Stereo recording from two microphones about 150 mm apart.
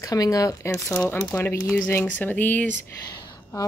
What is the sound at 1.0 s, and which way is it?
A woman's voice, 10° left (ahead or behind).